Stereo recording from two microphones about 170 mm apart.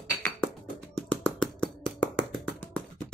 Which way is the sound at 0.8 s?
5° left (ahead or behind).